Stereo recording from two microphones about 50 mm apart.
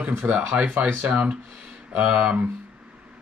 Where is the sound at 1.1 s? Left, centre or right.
Right.